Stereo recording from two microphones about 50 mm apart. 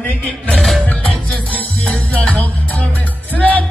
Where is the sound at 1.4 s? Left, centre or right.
Left.